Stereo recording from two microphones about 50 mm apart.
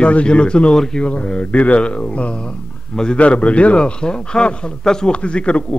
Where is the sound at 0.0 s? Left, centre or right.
Left.